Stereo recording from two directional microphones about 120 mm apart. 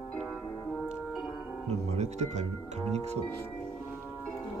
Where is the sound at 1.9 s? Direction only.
70° right (ahead or behind).